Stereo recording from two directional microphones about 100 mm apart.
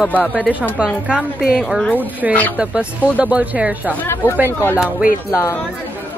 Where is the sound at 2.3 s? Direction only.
15° left (ahead or behind).